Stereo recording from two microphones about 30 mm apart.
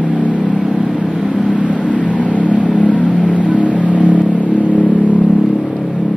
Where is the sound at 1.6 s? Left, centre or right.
Left.